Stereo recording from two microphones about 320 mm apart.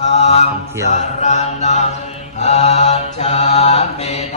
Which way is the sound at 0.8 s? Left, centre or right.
Left.